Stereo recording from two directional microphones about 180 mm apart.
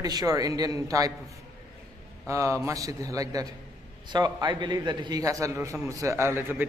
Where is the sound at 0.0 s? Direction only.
20° right (ahead or behind).